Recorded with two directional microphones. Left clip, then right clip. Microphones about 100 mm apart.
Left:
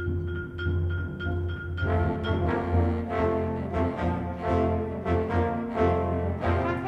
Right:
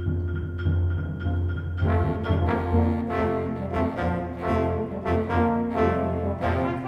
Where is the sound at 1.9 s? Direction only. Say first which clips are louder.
Right 2 dB; 15° right (ahead or behind).